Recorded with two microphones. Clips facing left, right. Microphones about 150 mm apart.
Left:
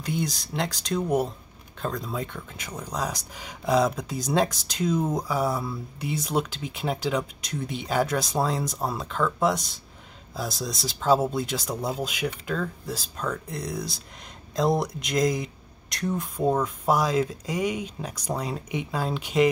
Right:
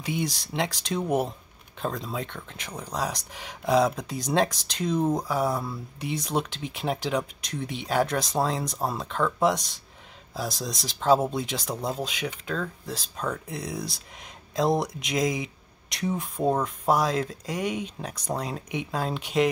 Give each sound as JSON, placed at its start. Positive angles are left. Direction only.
{"t": 0.0, "sound": "speech", "side_deg": 0}